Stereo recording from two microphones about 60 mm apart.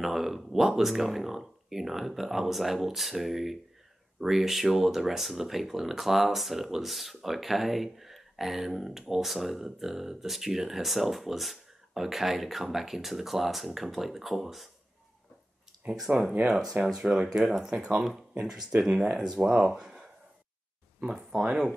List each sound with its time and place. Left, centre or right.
0.0 s speech: centre
15.8 s speech: right
16.4 s speech: centre
21.4 s speech: centre